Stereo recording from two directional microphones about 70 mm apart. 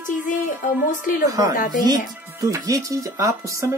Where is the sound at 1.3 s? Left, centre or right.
Right.